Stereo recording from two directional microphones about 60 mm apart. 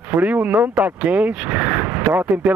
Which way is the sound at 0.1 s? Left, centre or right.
Right.